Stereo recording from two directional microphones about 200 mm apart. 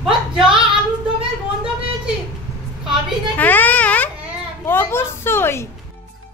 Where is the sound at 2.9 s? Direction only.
10° left (ahead or behind).